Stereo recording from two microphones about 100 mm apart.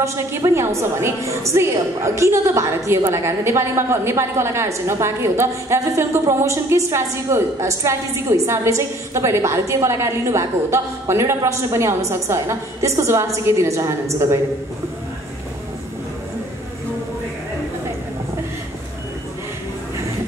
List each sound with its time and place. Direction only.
0.0 s a woman's voice: 30° right (ahead or behind)